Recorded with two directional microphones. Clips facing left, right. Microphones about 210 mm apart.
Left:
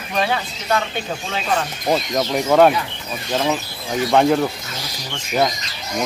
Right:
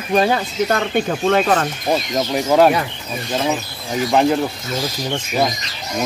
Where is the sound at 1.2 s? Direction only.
55° right (ahead or behind).